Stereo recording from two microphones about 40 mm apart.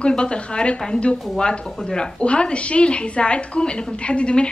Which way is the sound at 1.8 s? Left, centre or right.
Centre.